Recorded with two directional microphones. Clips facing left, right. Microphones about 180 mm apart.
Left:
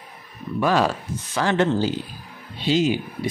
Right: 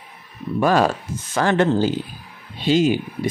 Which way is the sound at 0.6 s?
45° right (ahead or behind).